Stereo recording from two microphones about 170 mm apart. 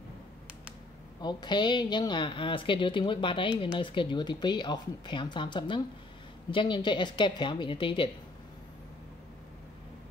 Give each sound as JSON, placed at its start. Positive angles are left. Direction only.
{"t": 1.2, "sound": "a woman's voice", "side_deg": 25}